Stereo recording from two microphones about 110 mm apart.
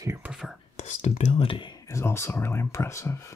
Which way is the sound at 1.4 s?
45° left (ahead or behind).